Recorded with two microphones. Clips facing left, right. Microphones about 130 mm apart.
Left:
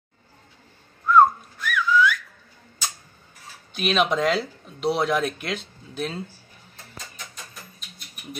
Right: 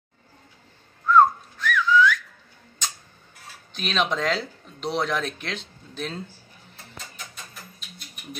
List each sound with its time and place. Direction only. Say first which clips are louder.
1.0 s whistling: left 1 dB; 10° left (ahead or behind)
3.7 s speech: left 4 dB; 10° left (ahead or behind)